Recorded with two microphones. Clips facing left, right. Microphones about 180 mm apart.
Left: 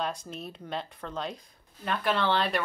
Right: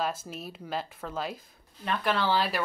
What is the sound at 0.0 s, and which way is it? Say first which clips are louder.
Speech: right 1 dB; 5° right (ahead or behind).